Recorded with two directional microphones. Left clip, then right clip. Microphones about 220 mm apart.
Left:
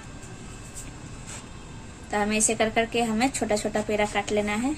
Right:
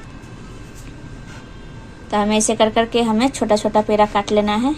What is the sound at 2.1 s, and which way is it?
A woman's voice, 20° right (ahead or behind).